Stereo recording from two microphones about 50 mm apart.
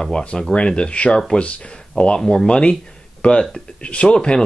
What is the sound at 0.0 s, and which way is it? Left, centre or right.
Speech, centre.